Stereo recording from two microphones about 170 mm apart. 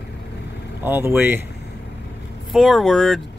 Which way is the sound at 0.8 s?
10° right (ahead or behind).